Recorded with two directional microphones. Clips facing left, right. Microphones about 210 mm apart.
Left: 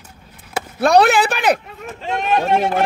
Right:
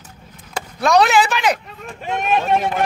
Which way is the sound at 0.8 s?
55° left (ahead or behind).